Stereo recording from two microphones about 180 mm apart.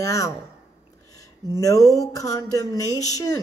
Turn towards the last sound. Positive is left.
turn(degrees=20)  # may be behind; listen again after turning